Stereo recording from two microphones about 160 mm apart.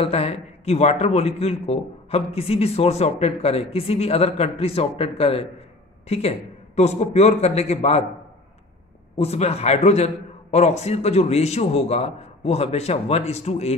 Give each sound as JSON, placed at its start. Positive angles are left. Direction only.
{"t": 0.0, "sound": "a man's voice", "side_deg": 40}
{"t": 9.1, "sound": "a man's voice", "side_deg": 40}